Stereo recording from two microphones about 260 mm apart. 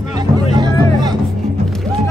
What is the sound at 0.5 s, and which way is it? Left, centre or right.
Music, centre.